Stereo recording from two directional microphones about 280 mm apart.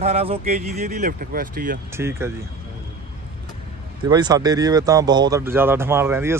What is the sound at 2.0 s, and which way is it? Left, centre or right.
Speech, centre.